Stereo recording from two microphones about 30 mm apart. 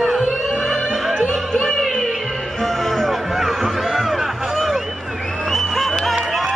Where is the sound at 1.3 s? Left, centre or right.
Centre.